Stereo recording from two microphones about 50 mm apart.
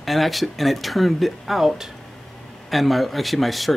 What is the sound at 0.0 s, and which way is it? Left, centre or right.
Speech, centre.